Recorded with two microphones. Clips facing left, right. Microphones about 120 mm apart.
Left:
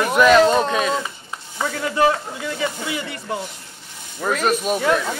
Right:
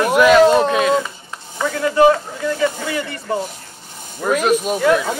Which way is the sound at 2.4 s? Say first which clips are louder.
Right 6 dB; 10° left (ahead or behind).